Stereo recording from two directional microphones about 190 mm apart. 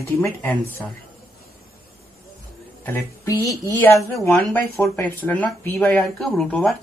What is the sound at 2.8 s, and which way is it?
Speech, 15° left (ahead or behind).